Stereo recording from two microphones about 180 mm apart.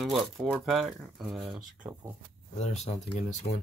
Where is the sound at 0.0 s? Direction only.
Centre (ahead or behind).